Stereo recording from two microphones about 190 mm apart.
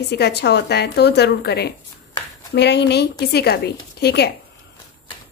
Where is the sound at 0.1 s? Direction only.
60° left (ahead or behind).